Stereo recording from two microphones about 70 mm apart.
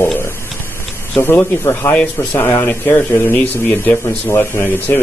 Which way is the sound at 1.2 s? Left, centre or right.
Left.